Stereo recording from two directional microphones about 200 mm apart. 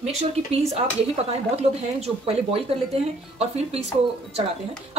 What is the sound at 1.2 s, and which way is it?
Speech, 30° right (ahead or behind).